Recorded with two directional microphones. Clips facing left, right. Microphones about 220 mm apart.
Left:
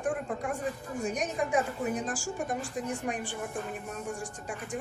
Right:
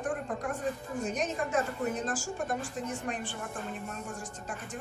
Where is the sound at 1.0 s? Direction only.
15° left (ahead or behind).